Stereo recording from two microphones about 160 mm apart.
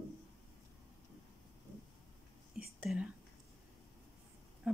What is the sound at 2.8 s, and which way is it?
Speech, 5° right (ahead or behind).